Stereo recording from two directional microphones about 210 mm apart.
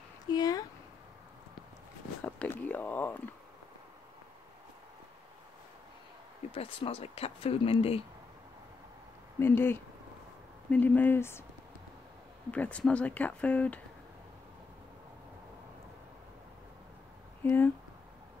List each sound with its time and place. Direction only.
0.3 s a sound: 20° left (ahead or behind)
2.2 s speech: 5° left (ahead or behind)
6.5 s speech: 25° left (ahead or behind)
9.4 s speech: 10° left (ahead or behind)
12.4 s speech: 5° left (ahead or behind)
17.4 s speech: 10° left (ahead or behind)